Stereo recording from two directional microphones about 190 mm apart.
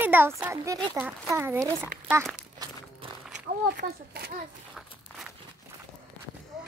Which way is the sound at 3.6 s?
60° right (ahead or behind).